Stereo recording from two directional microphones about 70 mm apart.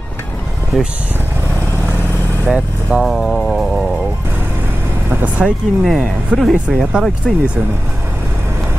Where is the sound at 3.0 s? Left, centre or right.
Centre.